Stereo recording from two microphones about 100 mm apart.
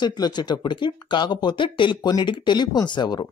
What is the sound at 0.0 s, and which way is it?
Speech, 45° left (ahead or behind).